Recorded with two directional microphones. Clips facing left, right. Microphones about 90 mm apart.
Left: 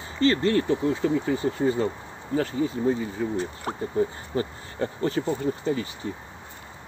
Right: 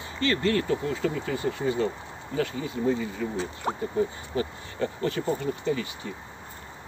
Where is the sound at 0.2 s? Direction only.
30° left (ahead or behind).